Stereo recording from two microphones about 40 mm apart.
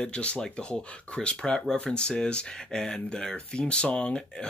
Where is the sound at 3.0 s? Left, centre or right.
Left.